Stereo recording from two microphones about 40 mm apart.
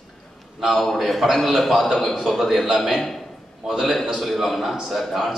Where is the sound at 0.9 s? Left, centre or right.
Centre.